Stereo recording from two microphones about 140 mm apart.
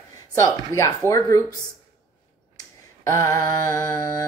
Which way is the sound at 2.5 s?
25° left (ahead or behind).